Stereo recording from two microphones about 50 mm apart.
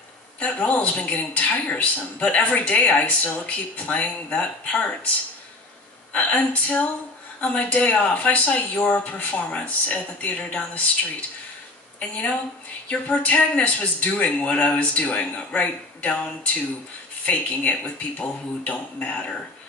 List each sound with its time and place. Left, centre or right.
0.4 s speech: left
6.1 s speech: left
17.3 s speech: left